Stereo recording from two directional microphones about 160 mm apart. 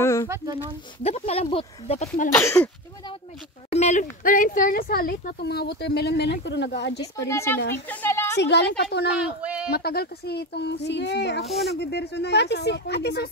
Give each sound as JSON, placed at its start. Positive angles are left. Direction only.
{"t": 0.0, "sound": "a sound", "side_deg": 20}
{"t": 0.3, "sound": "speech", "side_deg": -20}
{"t": 1.0, "sound": "speech", "side_deg": 40}
{"t": 2.3, "sound": "speech", "side_deg": 15}
{"t": 3.7, "sound": "speech", "side_deg": 50}
{"t": 7.0, "sound": "speech", "side_deg": 20}
{"t": 7.9, "sound": "a sound", "side_deg": 15}
{"t": 8.4, "sound": "speech", "side_deg": 90}
{"t": 9.1, "sound": "speech", "side_deg": -10}
{"t": 9.7, "sound": "speech", "side_deg": 80}
{"t": 11.4, "sound": "speech", "side_deg": 0}
{"t": 11.7, "sound": "speech", "side_deg": 90}